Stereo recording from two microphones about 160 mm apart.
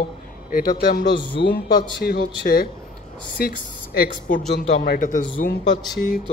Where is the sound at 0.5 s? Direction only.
65° left (ahead or behind).